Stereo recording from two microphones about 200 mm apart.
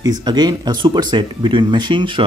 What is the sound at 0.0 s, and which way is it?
Speech, 20° right (ahead or behind).